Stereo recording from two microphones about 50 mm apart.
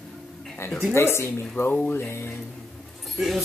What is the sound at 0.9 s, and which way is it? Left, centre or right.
Speech, left.